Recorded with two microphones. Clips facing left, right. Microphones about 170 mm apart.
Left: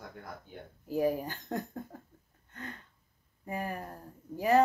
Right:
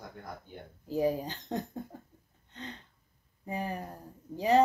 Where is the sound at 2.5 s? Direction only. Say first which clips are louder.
Even; 20° right (ahead or behind).